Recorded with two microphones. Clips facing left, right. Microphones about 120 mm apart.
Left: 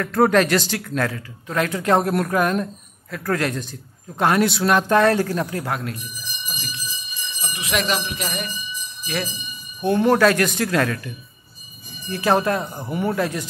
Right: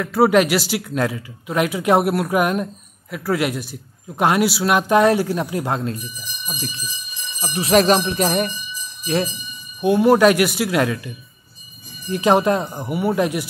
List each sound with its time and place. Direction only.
0.0 s speech: 10° right (ahead or behind); by 8.5 s 40° right (ahead or behind)
9.0 s speech: 30° right (ahead or behind)
9.8 s speech: 10° right (ahead or behind)
12.1 s speech: 15° right (ahead or behind)